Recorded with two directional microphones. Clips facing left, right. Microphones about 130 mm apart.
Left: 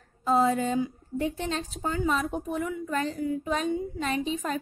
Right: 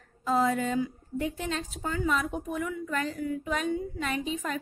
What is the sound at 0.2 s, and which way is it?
A woman's voice, 30° left (ahead or behind).